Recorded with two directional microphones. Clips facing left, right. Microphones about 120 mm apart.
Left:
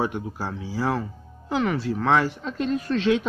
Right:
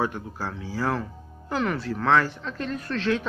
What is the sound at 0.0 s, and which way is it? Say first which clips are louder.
Speech: left 1 dB; 15° left (ahead or behind).